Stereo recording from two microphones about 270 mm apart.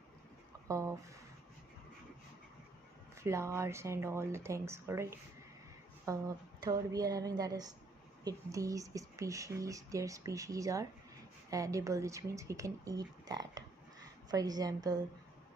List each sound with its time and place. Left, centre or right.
0.7 s speech: centre
3.2 s speech: centre